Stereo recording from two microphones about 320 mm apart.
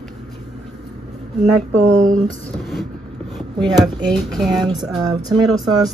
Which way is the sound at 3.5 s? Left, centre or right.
Centre.